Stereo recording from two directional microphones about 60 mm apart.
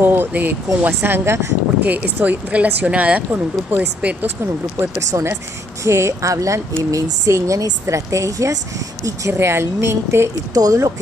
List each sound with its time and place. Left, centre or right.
0.0 s a woman's voice: right
1.9 s speech: right
5.1 s a woman's voice: right
9.3 s a woman's voice: right
10.5 s speech: right